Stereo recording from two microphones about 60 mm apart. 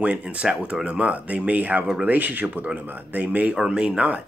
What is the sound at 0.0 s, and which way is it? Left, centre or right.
Speech, right.